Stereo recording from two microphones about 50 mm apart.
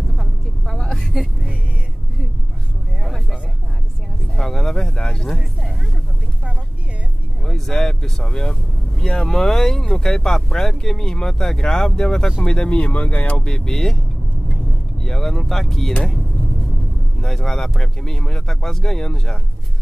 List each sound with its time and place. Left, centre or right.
0.2 s vehicle: centre
3.0 s a sound: centre
4.4 s a sound: centre
7.4 s speech: centre; by 13.4 s left
13.4 s speech: centre
14.5 s vehicle: centre
17.2 s speech: centre